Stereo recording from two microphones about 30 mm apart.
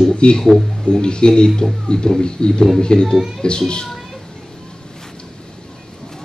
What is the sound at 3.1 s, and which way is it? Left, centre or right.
Speech, centre.